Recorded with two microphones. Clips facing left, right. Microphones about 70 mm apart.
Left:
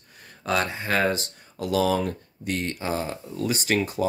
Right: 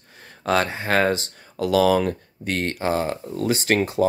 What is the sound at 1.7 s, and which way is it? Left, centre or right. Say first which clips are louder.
Speech: right 5 dB; right.